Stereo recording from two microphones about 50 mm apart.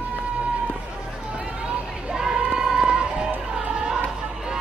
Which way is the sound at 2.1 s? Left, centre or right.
Centre.